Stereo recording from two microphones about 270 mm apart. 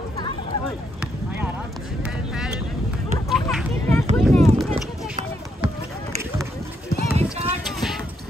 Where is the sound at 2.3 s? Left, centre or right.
Centre.